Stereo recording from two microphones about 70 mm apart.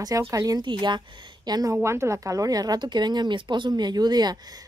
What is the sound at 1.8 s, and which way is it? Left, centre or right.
Speech, right.